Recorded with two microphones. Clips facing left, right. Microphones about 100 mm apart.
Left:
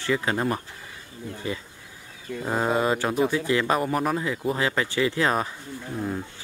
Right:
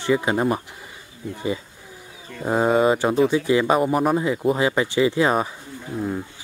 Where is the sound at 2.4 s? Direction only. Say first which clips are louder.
Right 6 dB; 10° right (ahead or behind).